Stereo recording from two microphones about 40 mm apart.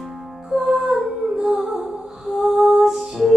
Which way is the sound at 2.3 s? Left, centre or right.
Centre.